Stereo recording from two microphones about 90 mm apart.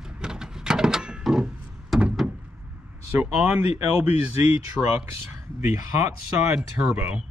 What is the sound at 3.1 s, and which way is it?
Speech, 15° right (ahead or behind).